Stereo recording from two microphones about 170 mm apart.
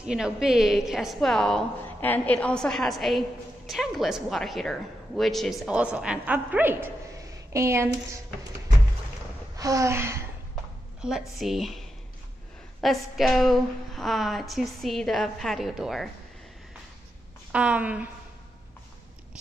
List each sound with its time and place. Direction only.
0.0 s a woman's voice: 5° right (ahead or behind)
9.6 s speech: 20° right (ahead or behind)
11.0 s a woman's voice: 5° right (ahead or behind)
12.8 s a woman's voice: centre (ahead or behind)
17.5 s speech: 5° right (ahead or behind)